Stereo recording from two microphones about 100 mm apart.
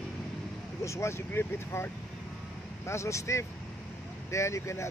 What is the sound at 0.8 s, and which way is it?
Speech, 30° left (ahead or behind).